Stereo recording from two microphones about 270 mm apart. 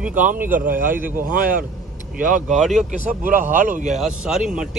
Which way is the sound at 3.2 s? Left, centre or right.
Right.